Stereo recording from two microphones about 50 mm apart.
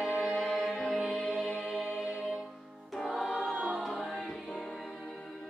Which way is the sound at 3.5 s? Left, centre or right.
Right.